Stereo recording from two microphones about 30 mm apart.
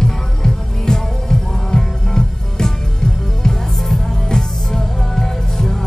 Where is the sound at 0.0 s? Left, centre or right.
Centre.